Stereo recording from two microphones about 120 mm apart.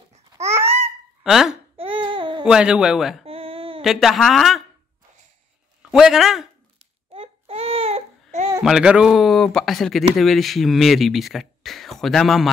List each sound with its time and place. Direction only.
0.4 s babbling: 65° right (ahead or behind)
1.2 s speech: 5° right (ahead or behind)
1.8 s baby cry: 45° right (ahead or behind)
2.4 s speech: 5° right (ahead or behind)
3.3 s a sound: 50° right (ahead or behind)
3.8 s speech: centre (ahead or behind)
5.8 s a man's voice: 5° right (ahead or behind)
7.1 s baby cry: 55° right (ahead or behind)
8.6 s speech: 5° right (ahead or behind)